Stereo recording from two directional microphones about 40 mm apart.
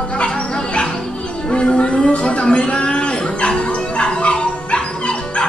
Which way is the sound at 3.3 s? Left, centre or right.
Left.